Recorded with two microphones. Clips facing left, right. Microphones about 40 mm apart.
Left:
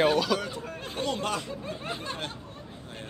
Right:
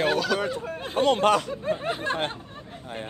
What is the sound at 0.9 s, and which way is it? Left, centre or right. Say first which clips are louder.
Speech: right 10 dB; right.